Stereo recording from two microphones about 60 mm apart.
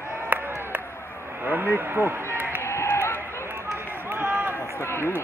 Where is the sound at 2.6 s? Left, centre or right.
Left.